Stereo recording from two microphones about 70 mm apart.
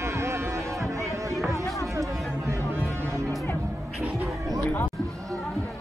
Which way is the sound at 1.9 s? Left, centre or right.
Right.